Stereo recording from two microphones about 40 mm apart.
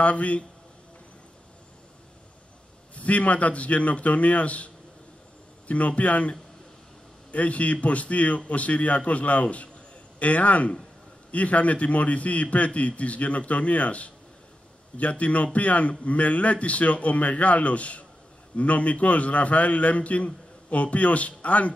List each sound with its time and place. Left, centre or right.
0.0 s a man's voice: left
3.0 s a man's voice: left
5.7 s a man's voice: left
7.3 s a man's voice: left